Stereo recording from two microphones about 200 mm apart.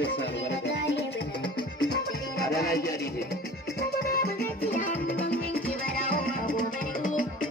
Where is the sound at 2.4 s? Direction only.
50° left (ahead or behind).